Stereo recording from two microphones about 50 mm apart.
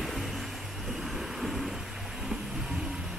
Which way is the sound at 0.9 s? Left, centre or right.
Centre.